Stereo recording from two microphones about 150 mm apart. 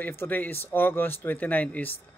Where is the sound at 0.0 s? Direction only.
15° left (ahead or behind).